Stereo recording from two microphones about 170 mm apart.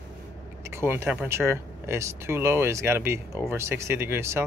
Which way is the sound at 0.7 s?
15° right (ahead or behind).